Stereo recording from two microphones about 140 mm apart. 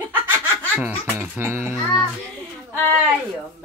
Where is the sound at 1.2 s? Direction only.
15° right (ahead or behind).